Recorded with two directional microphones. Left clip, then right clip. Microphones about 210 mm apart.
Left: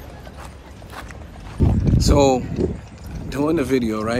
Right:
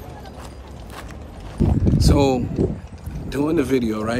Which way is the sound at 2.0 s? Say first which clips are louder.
Left 3 dB; 5° right (ahead or behind).